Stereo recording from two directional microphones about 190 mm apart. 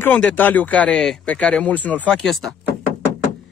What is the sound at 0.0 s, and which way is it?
Speech, 5° left (ahead or behind).